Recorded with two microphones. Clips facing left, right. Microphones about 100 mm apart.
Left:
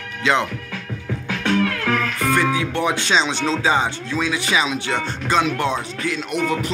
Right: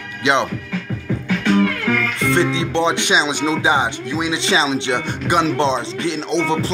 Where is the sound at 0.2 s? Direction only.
20° right (ahead or behind).